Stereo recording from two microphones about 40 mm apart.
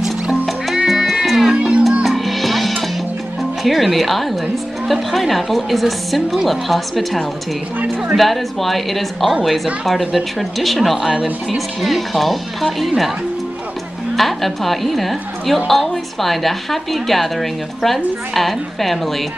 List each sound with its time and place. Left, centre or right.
0.0 s music: centre
1.6 s music: right
2.0 s music: centre
3.6 s a woman's voice: centre
8.2 s a woman's voice: centre
14.1 s a woman's voice: centre